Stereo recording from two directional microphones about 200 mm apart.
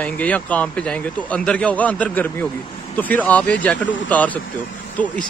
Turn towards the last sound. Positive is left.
turn(degrees=5)  # may be behind; listen again after turning